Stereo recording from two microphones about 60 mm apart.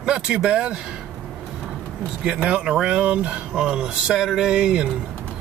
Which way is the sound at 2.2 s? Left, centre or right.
Centre.